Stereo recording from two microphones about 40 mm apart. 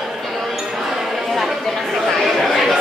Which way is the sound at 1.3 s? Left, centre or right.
Centre.